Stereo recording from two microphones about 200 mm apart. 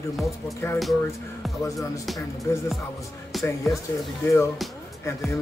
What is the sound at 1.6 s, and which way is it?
Speech, 15° left (ahead or behind).